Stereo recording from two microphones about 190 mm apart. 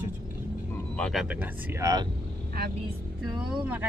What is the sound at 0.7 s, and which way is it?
Speech, centre (ahead or behind).